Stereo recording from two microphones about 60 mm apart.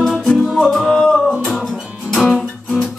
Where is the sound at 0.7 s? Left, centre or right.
Centre.